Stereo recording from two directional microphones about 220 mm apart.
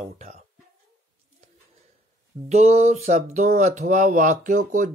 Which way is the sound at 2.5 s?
30° right (ahead or behind).